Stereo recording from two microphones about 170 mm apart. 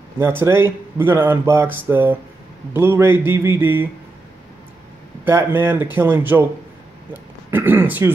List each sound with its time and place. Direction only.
0.2 s speech: 15° right (ahead or behind)
5.2 s speech: 10° right (ahead or behind)
7.5 s speech: 10° right (ahead or behind)